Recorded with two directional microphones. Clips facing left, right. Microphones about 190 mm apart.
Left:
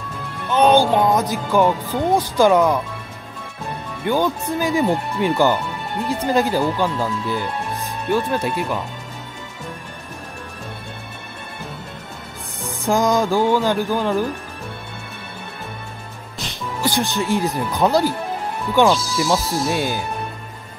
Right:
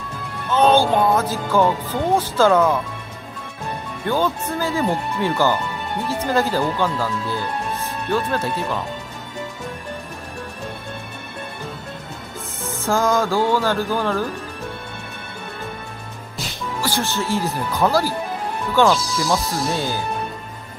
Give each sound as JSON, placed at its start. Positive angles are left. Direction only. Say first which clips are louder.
{"t": 0.5, "sound": "speech", "louder": "left 1 dB", "side_deg": 15}
{"t": 4.0, "sound": "speech", "louder": "left 2 dB", "side_deg": 15}
{"t": 12.6, "sound": "speech", "louder": "left 1 dB", "side_deg": 15}
{"t": 16.8, "sound": "speech", "louder": "left 3 dB", "side_deg": 15}
{"t": 19.2, "sound": "speech", "louder": "left 2 dB", "side_deg": 0}
{"t": 19.7, "sound": "speech", "louder": "left 2 dB", "side_deg": 15}